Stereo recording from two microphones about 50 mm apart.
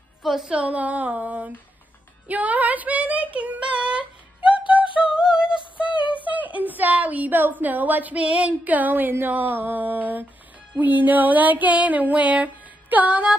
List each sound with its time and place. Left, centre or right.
0.2 s music: centre
0.5 s a woman's voice: right
2.2 s child singing: right
4.5 s music: right
5.2 s synthetic singing: centre
6.2 s a sound: right
6.7 s a woman's voice: right
12.9 s music: right